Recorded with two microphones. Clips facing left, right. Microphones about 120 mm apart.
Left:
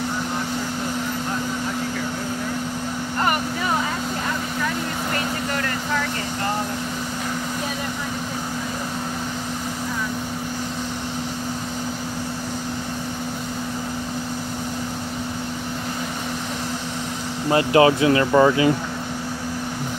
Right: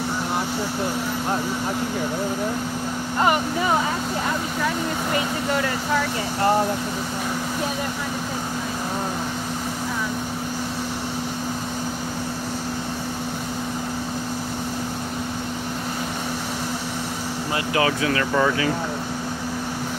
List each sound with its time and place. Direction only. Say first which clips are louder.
5.1 s vehicle: right 3 dB; 5° right (ahead or behind)
17.5 s speech: left 8 dB; 30° left (ahead or behind)